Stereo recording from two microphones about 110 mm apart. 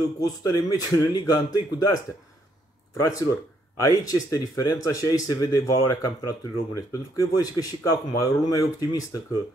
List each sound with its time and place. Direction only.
0.2 s speech: 35° left (ahead or behind)
3.0 s speech: 25° left (ahead or behind)